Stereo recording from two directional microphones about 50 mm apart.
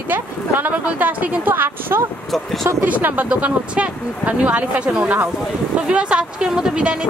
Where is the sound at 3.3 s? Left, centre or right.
Right.